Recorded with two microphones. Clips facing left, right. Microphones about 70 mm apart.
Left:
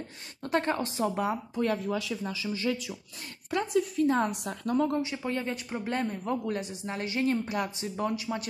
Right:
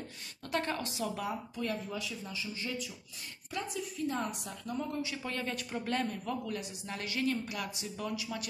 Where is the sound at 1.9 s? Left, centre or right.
Left.